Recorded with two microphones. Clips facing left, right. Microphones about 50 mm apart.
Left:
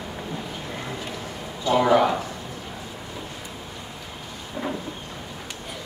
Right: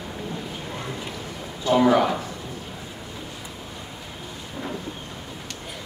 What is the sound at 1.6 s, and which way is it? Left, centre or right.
Speech, centre.